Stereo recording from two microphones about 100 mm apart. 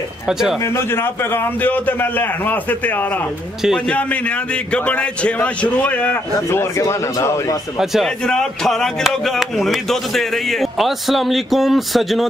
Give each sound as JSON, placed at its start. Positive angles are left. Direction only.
{"t": 0.3, "sound": "speech", "side_deg": -5}
{"t": 0.7, "sound": "a man's voice", "side_deg": 25}
{"t": 3.6, "sound": "a man's voice", "side_deg": 5}
{"t": 6.5, "sound": "a man's voice", "side_deg": 30}
{"t": 7.8, "sound": "speech", "side_deg": -5}